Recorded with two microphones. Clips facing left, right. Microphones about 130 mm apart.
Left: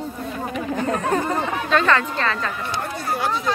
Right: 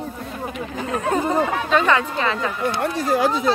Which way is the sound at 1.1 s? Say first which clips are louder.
Right 3 dB; 10° right (ahead or behind).